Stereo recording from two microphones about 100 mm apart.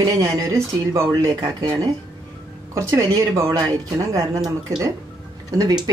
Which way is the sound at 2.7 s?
30° right (ahead or behind).